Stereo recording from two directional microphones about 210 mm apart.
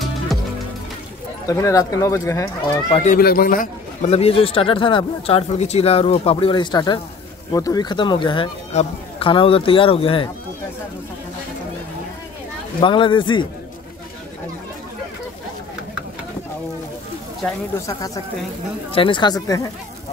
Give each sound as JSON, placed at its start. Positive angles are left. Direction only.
{"t": 1.5, "sound": "speech", "side_deg": 15}
{"t": 2.9, "sound": "speech", "side_deg": 35}
{"t": 3.2, "sound": "a man's voice", "side_deg": 45}
{"t": 4.1, "sound": "speech", "side_deg": 25}
{"t": 12.8, "sound": "speech", "side_deg": 25}
{"t": 17.7, "sound": "speech", "side_deg": 15}